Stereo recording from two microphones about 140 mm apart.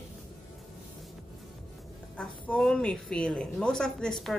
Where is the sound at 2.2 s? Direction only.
5° left (ahead or behind).